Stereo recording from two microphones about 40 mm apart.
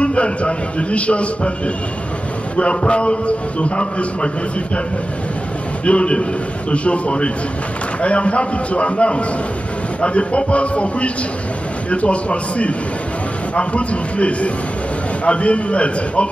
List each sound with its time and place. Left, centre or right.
0.0 s a man's voice: left
2.5 s a man's voice: left
5.9 s a man's voice: left